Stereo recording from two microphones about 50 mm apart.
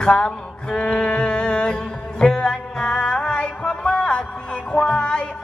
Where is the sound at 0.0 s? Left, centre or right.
Centre.